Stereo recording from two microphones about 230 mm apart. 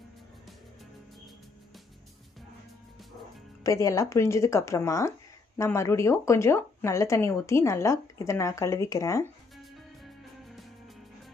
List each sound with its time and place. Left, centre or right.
3.6 s speech: centre
9.6 s music: centre